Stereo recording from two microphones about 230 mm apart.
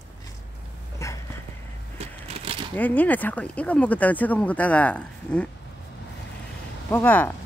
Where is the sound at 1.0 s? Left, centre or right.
Centre.